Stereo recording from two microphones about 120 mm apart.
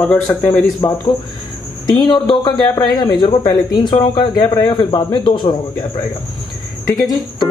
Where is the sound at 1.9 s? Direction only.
35° left (ahead or behind).